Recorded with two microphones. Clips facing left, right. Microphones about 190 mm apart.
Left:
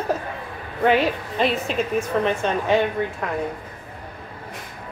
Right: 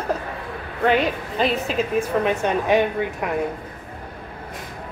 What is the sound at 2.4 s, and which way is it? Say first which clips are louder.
Speech: right 1 dB; 15° right (ahead or behind).